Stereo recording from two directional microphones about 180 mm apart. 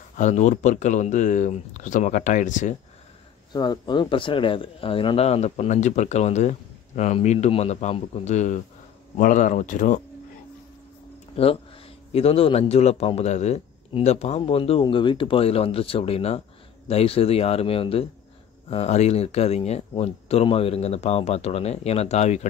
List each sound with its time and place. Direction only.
0.2 s speech: 40° left (ahead or behind)
3.5 s speech: 25° left (ahead or behind); by 10.0 s 45° left (ahead or behind)
11.4 s speech: 35° left (ahead or behind)